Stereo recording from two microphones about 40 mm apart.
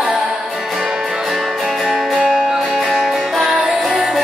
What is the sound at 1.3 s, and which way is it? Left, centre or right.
Music, centre.